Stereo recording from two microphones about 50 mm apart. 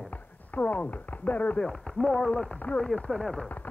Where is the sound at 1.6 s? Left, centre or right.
Centre.